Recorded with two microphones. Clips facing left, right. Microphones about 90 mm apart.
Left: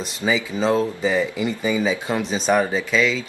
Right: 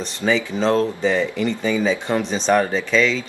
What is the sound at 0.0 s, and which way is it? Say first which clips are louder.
Speech: right 2 dB; 5° left (ahead or behind).